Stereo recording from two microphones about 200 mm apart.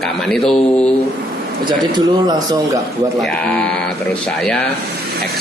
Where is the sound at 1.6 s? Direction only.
20° right (ahead or behind).